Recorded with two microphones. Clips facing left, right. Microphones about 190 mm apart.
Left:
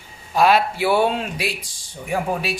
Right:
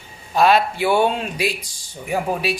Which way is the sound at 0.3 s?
10° left (ahead or behind).